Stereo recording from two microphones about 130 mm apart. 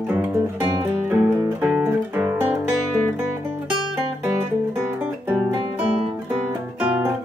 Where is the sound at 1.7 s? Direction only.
15° right (ahead or behind).